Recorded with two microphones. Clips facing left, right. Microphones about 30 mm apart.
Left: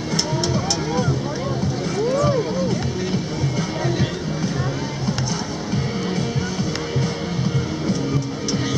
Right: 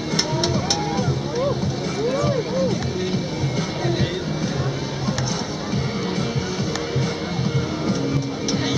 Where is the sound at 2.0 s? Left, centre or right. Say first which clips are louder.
Left 2 dB; centre.